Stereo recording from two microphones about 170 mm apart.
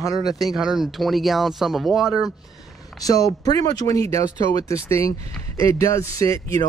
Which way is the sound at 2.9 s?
20° left (ahead or behind).